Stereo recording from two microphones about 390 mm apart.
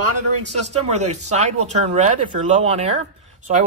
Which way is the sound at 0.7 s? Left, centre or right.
Centre.